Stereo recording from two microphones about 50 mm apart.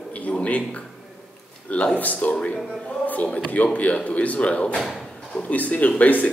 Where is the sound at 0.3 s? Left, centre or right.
Left.